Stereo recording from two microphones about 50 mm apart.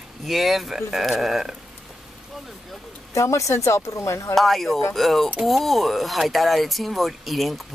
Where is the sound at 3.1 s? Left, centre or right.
Left.